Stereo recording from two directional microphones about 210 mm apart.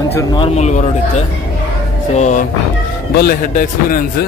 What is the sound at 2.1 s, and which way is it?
Speech, 35° left (ahead or behind).